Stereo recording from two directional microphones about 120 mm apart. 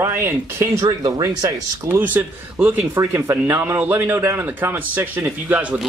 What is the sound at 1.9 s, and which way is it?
Speech, 15° right (ahead or behind).